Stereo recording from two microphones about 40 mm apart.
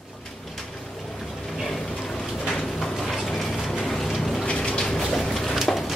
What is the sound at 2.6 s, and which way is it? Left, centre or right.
Mechanisms, centre.